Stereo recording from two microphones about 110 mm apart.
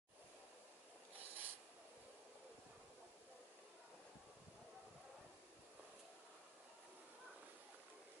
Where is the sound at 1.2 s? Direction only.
15° right (ahead or behind).